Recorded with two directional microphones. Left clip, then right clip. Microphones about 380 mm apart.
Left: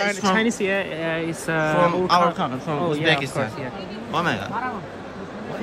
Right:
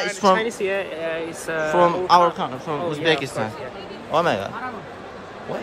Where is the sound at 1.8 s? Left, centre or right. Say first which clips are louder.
Right 4 dB; centre.